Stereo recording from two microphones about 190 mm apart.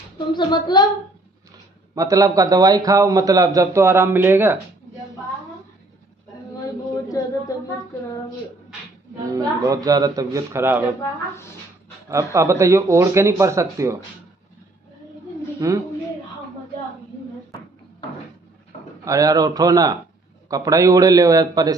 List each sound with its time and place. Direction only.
0.3 s speech: 25° left (ahead or behind)
2.0 s a man's voice: 20° right (ahead or behind)
9.3 s speech: 20° right (ahead or behind)
12.1 s a man's voice: 15° right (ahead or behind)
15.6 s a man's voice: 15° right (ahead or behind)
19.0 s speech: 20° right (ahead or behind)